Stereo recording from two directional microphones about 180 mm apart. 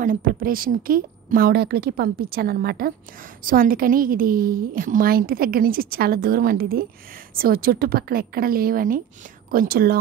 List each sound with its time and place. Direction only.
0.0 s a woman's voice: 50° right (ahead or behind)